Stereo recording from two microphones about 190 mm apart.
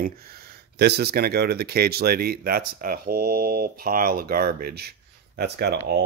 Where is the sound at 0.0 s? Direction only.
50° right (ahead or behind).